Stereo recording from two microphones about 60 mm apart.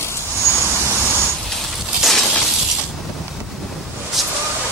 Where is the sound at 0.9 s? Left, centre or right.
Right.